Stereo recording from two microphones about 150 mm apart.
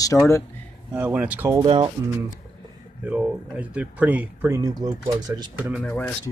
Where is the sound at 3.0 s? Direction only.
10° right (ahead or behind); by 5.5 s 25° right (ahead or behind).